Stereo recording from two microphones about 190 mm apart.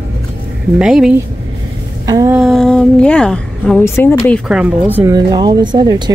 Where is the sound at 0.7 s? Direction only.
5° right (ahead or behind).